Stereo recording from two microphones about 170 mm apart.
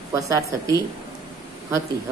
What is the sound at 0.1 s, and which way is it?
Speech, 20° right (ahead or behind).